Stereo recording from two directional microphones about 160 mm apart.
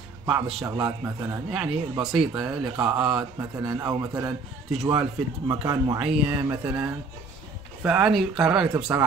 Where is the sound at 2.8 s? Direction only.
30° right (ahead or behind).